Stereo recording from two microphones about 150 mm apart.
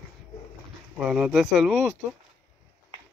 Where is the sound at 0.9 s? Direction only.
5° right (ahead or behind).